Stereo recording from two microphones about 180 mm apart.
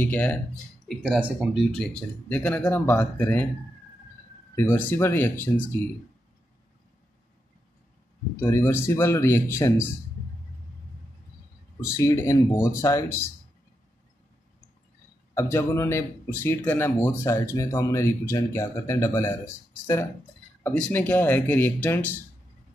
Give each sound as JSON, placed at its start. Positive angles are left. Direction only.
{"t": 0.0, "sound": "speech", "side_deg": 10}
{"t": 4.6, "sound": "speech", "side_deg": 10}
{"t": 8.4, "sound": "speech", "side_deg": 15}
{"t": 11.8, "sound": "speech", "side_deg": 15}
{"t": 15.3, "sound": "speech", "side_deg": 15}